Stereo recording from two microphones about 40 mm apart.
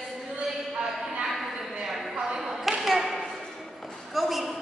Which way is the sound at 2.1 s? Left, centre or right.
Centre.